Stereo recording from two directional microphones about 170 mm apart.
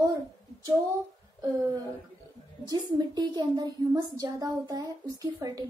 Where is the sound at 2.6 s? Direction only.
25° right (ahead or behind).